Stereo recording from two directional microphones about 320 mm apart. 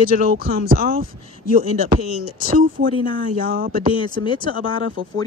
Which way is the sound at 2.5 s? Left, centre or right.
Right.